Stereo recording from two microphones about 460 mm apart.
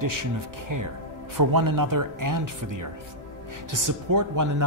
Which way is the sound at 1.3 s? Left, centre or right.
Right.